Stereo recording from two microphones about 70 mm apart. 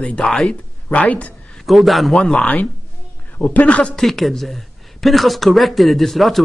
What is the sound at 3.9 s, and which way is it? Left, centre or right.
Speech, centre.